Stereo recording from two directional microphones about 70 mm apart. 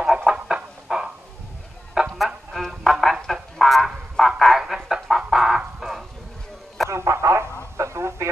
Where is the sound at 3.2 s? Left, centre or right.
Centre.